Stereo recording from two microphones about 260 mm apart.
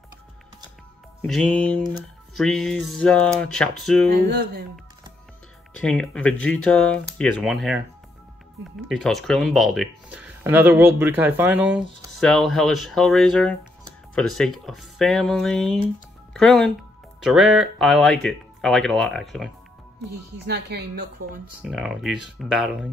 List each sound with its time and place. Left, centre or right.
1.2 s speech: centre
5.8 s speech: centre
8.9 s speech: centre
20.4 s speech: right
21.2 s speech: right
21.6 s speech: centre